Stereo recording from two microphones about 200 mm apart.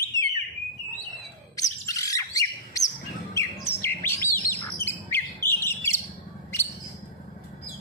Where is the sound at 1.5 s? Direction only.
15° left (ahead or behind).